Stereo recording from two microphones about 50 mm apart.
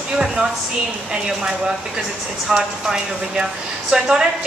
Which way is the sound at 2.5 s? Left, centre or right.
Centre.